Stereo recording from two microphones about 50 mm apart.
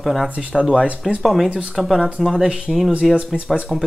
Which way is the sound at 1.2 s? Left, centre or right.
Centre.